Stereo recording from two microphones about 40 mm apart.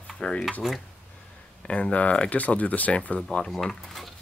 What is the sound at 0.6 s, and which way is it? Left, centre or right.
Speech, centre.